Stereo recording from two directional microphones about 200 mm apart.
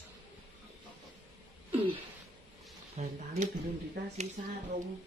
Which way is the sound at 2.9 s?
35° right (ahead or behind).